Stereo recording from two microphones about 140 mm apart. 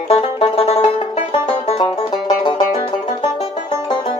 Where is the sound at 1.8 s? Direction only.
30° left (ahead or behind).